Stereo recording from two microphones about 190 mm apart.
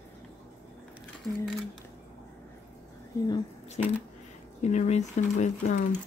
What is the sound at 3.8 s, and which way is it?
Speech, 35° left (ahead or behind).